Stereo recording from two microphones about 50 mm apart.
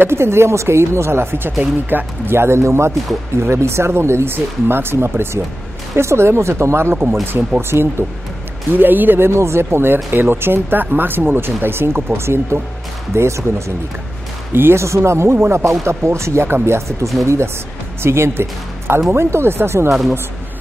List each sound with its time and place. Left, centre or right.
0.0 s speech: right
8.7 s speech: right
9.3 s speech: right
14.5 s speech: right
14.8 s speech: right
18.0 s speech: right